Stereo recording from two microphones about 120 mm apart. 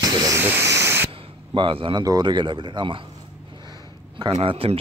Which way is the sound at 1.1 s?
45° right (ahead or behind).